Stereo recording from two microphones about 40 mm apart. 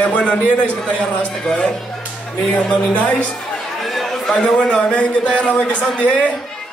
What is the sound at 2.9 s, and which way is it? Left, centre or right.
Speech, left.